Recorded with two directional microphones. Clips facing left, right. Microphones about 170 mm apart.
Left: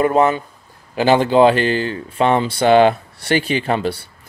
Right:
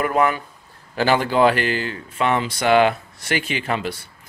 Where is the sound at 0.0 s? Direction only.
25° left (ahead or behind).